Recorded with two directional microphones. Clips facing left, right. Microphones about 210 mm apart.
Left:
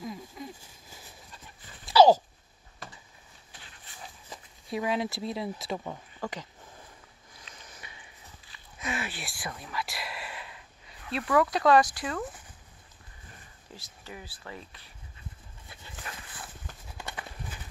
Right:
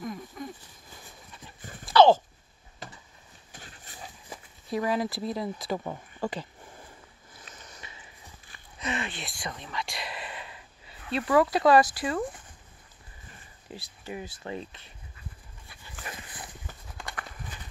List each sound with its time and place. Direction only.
0.0 s a sound: 5° left (ahead or behind)
1.6 s dog: 50° right (ahead or behind)
2.0 s a sound: 10° left (ahead or behind)
3.5 s a sound: 45° right (ahead or behind)
4.6 s speech: centre (ahead or behind)
6.2 s speech: 15° right (ahead or behind)
7.5 s sniff: centre (ahead or behind)
8.7 s whispering: centre (ahead or behind)
11.9 s speech: 5° right (ahead or behind)
13.7 s speech: 20° right (ahead or behind)
16.1 s horse: 15° right (ahead or behind)